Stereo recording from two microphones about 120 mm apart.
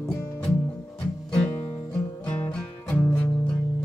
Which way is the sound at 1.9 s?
10° left (ahead or behind).